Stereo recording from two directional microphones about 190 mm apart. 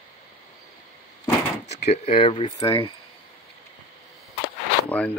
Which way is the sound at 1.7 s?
35° left (ahead or behind).